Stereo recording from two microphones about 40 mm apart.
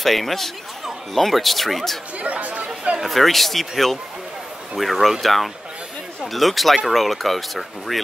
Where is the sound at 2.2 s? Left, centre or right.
Right.